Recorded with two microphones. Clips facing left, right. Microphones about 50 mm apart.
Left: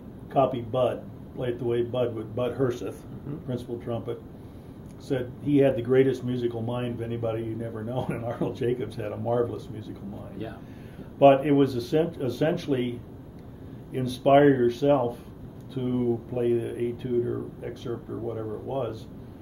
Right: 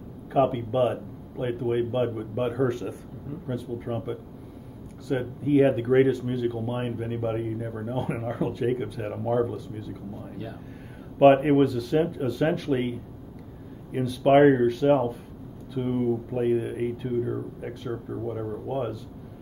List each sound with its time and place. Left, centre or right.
0.3 s speech: centre
11.1 s speech: centre
13.9 s speech: centre